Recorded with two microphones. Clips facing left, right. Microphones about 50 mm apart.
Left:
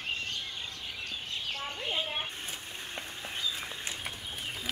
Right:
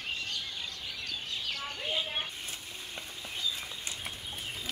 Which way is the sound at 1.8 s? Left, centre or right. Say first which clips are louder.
Even; centre.